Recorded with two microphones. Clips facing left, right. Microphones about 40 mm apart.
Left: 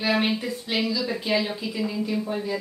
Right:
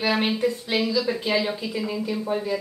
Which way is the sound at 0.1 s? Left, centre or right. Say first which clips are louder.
Right 1 dB; centre.